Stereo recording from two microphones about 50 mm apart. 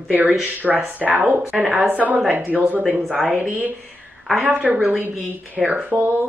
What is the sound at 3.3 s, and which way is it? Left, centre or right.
A woman's voice, right.